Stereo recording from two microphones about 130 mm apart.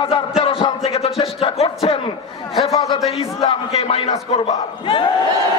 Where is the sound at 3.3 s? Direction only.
50° left (ahead or behind).